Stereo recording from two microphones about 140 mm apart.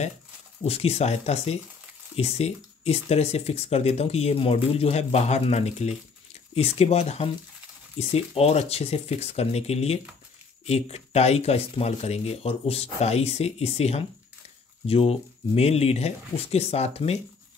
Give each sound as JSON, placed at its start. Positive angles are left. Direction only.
{"t": 0.7, "sound": "speech", "side_deg": 45}